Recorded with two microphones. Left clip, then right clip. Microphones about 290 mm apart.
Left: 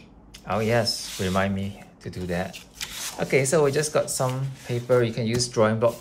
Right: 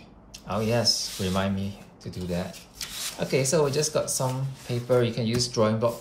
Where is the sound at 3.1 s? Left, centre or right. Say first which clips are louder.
Left 3 dB; centre.